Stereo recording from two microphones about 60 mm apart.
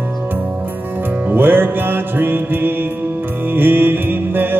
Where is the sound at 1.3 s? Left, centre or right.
Right.